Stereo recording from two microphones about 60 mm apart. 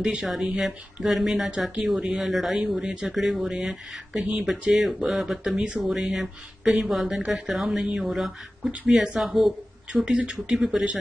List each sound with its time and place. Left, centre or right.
0.0 s speech: centre
2.6 s speech: right
2.9 s speech: centre